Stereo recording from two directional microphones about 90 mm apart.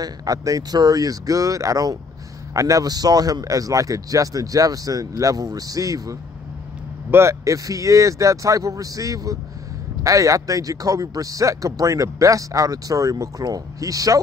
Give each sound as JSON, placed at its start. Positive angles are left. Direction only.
{"t": 0.0, "sound": "speech", "side_deg": -40}